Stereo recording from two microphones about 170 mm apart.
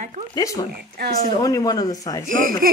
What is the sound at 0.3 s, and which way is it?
Speech, 20° left (ahead or behind).